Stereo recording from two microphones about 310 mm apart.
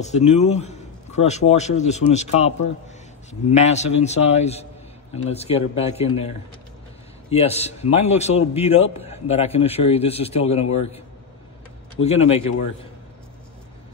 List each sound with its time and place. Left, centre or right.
0.0 s a man's voice: left
12.0 s a man's voice: centre